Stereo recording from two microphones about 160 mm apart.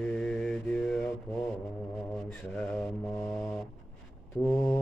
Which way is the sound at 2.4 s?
5° left (ahead or behind).